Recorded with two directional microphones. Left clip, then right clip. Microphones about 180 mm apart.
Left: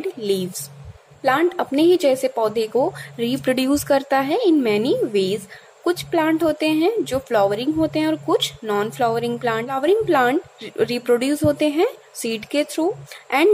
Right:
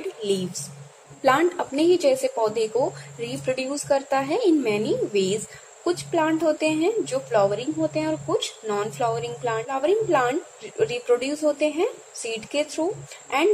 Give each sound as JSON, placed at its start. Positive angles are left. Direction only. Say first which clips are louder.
{"t": 0.2, "sound": "speech", "louder": "left 3 dB", "side_deg": 25}
{"t": 1.2, "sound": "a woman's voice", "louder": "left 2 dB", "side_deg": 10}